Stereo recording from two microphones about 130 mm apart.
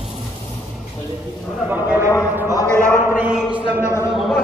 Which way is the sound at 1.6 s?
15° right (ahead or behind).